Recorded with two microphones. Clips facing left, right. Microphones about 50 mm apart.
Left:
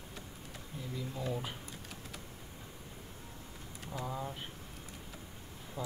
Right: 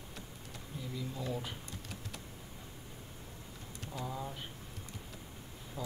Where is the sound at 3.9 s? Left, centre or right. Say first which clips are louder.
Left 1 dB; centre.